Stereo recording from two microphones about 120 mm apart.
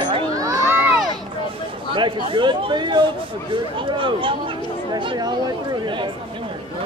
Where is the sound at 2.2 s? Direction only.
45° right (ahead or behind).